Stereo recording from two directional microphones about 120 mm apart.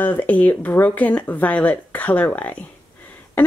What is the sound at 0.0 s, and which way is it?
Speech, 15° left (ahead or behind).